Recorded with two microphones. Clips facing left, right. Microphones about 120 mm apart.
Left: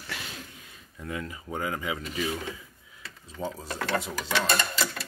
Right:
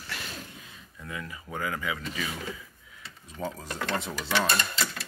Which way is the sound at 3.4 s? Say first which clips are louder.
Left 1 dB; 15° left (ahead or behind).